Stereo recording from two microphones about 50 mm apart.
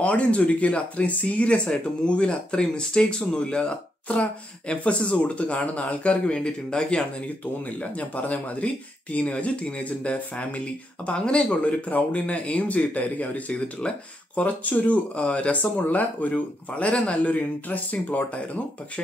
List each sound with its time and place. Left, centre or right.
0.0 s speech: left